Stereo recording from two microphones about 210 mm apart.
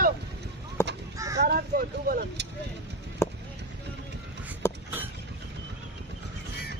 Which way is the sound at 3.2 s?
10° left (ahead or behind).